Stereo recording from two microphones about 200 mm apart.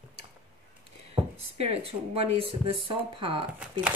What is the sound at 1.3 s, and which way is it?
Speech, 30° right (ahead or behind).